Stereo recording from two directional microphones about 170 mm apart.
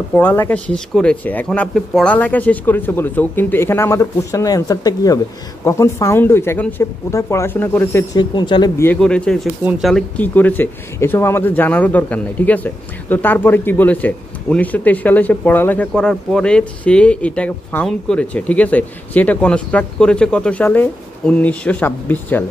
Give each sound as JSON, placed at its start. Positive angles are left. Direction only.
{"t": 0.1, "sound": "speech", "side_deg": 10}
{"t": 9.0, "sound": "speech", "side_deg": 5}